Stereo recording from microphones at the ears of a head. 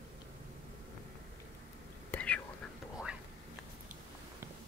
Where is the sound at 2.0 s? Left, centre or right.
Left.